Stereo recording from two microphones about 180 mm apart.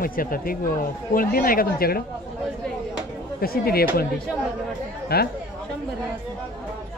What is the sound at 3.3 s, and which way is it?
Speech, 55° left (ahead or behind).